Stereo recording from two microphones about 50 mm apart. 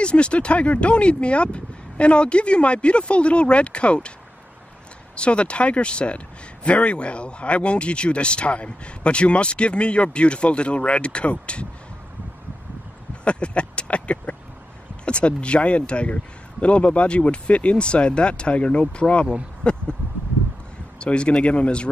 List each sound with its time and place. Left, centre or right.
0.0 s speech: left
5.1 s speech: left
13.2 s a sound: left
15.0 s speech: left
21.0 s speech: left